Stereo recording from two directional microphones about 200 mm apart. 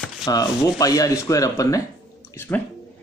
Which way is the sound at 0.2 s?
20° left (ahead or behind).